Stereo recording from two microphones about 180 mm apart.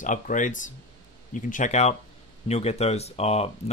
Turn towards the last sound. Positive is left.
turn(degrees=35)  # may be behind; listen again after turning